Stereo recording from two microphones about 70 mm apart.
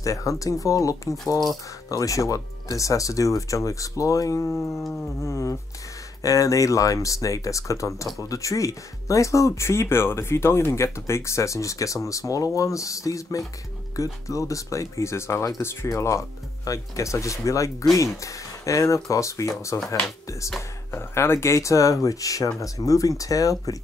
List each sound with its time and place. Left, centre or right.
0.0 s speech: left